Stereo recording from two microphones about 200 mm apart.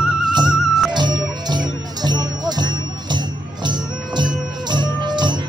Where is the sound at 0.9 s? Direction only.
20° right (ahead or behind).